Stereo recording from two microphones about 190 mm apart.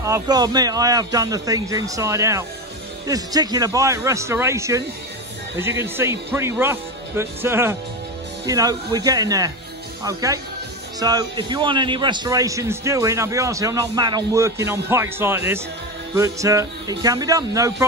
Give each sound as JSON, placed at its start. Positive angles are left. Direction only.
{"t": 0.0, "sound": "a man's voice", "side_deg": -20}